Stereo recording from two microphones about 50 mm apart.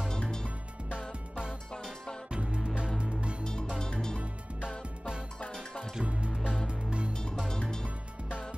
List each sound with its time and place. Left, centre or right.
0.1 s music: centre
1.7 s music: centre
2.3 s music: centre
3.8 s music: centre
4.6 s music: centre
7.6 s music: centre